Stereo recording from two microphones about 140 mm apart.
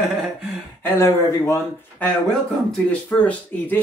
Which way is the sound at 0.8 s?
15° left (ahead or behind).